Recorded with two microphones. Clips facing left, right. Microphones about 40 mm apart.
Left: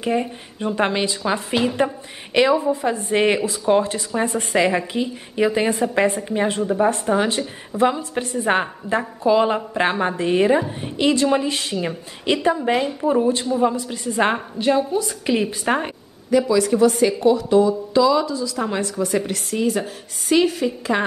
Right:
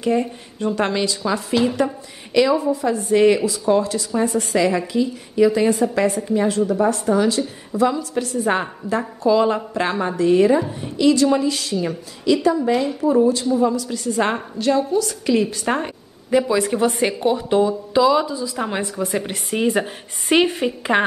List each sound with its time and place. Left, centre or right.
0.0 s a woman's voice: centre
16.3 s a woman's voice: right
19.2 s a woman's voice: right